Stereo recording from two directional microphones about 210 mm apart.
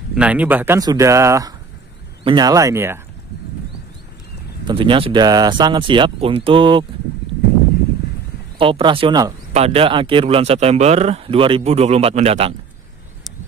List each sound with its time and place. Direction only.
0.1 s speech: 5° right (ahead or behind)
4.6 s speech: 25° right (ahead or behind)
8.5 s speech: 25° right (ahead or behind)